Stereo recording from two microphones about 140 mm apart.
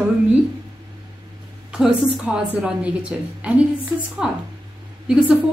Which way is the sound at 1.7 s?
5° right (ahead or behind).